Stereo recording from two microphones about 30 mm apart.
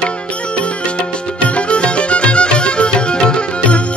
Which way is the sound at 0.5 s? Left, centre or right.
Left.